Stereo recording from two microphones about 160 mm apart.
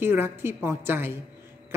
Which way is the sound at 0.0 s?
15° right (ahead or behind).